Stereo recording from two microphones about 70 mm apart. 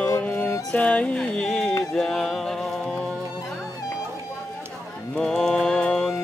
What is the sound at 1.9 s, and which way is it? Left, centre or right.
Music, centre.